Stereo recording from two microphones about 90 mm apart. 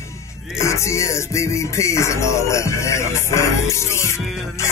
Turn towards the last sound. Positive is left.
turn(degrees=30)  # may be behind; listen again after turning